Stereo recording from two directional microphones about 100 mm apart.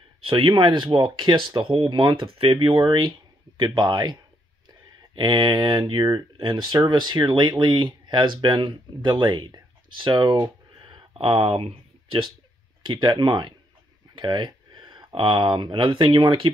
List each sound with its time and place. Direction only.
0.2 s speech: 60° right (ahead or behind)
10.8 s a sound: 55° right (ahead or behind)
12.8 s speech: 55° right (ahead or behind)